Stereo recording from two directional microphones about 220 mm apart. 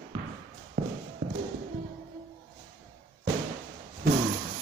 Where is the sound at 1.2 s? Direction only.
40° right (ahead or behind).